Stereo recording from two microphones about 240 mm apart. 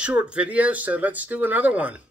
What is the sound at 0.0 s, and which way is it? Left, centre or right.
Speech, centre.